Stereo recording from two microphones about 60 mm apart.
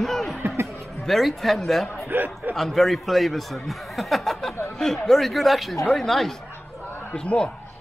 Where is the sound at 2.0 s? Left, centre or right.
Right.